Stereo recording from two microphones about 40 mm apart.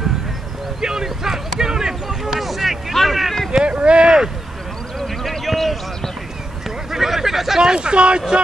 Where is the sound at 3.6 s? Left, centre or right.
Right.